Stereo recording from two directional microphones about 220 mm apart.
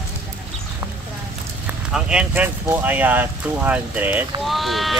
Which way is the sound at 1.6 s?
5° right (ahead or behind).